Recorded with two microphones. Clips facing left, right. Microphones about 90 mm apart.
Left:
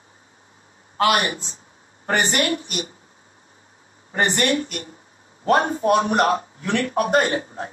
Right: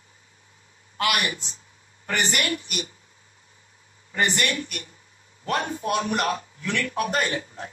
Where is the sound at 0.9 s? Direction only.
35° left (ahead or behind).